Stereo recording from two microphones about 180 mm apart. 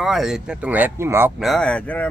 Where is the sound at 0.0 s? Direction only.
Centre (ahead or behind).